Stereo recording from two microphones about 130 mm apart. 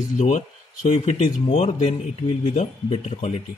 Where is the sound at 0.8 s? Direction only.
55° left (ahead or behind).